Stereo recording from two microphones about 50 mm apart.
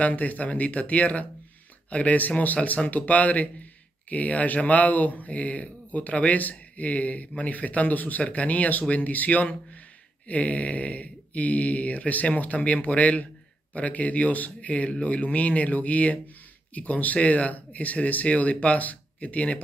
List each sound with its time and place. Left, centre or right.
0.0 s speech: left